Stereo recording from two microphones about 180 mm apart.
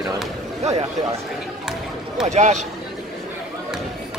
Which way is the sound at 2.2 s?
40° right (ahead or behind).